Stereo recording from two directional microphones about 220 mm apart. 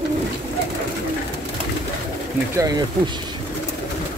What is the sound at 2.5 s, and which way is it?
Speech, 15° right (ahead or behind).